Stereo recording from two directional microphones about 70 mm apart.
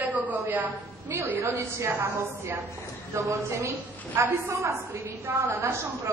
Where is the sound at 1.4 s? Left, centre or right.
Right.